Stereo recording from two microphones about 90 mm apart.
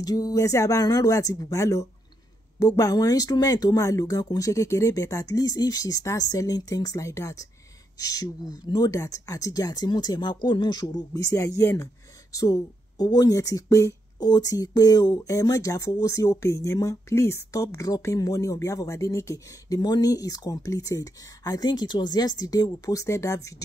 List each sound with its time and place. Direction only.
0.0 s speech: 45° left (ahead or behind)
8.9 s speech: 35° left (ahead or behind)
11.2 s speech: 35° left (ahead or behind)